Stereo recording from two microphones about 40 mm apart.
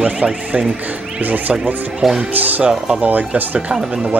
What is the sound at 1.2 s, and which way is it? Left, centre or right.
Speech, right.